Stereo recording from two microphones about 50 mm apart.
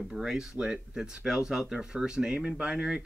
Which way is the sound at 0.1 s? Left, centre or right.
Centre.